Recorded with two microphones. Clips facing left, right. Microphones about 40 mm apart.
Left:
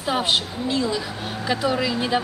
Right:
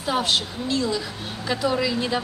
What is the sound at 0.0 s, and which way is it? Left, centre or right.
Speech, left.